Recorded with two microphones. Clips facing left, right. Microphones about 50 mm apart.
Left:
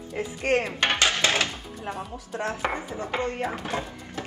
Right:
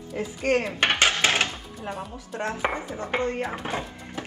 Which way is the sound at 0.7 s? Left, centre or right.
Right.